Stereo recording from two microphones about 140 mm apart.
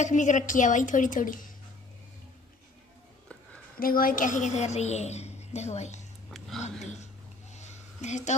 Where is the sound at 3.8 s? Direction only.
90° left; by 6.0 s 55° left (ahead or behind).